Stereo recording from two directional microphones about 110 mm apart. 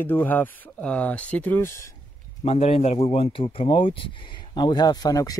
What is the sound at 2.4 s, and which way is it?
A man's voice, 65° left (ahead or behind).